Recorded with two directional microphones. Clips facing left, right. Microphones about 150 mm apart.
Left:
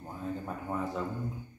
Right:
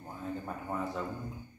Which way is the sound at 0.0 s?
5° left (ahead or behind).